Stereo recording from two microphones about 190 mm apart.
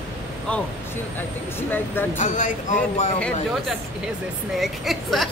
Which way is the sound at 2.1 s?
40° left (ahead or behind).